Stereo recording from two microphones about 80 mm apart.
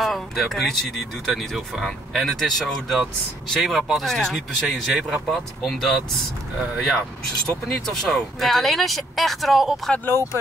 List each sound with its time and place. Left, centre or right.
0.0 s speech: centre
7.6 s speech: centre
10.0 s speech: left